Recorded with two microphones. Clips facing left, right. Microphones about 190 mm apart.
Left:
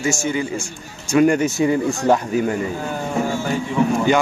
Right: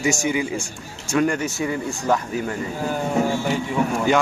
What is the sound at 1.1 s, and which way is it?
Speech, 15° left (ahead or behind).